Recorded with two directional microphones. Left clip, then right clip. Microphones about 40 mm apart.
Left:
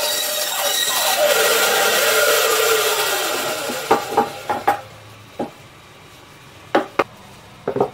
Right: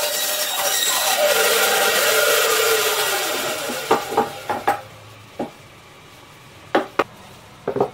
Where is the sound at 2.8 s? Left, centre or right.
Centre.